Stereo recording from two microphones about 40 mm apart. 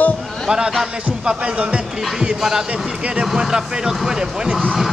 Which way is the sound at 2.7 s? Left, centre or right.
Right.